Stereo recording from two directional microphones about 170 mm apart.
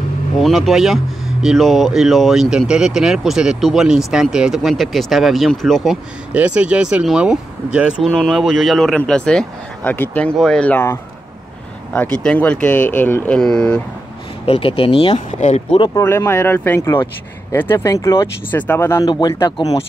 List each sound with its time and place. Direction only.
0.4 s speech: centre (ahead or behind)
14.4 s speech: 30° left (ahead or behind)
15.8 s speech: 15° left (ahead or behind)